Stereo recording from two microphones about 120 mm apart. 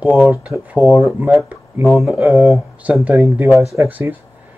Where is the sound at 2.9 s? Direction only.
15° right (ahead or behind).